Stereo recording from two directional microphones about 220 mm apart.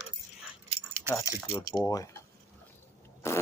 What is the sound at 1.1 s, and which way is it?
Speech, 15° left (ahead or behind).